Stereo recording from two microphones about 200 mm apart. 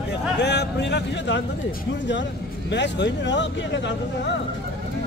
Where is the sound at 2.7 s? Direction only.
60° left (ahead or behind).